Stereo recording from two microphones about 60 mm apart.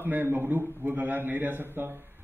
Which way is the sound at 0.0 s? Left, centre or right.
Right.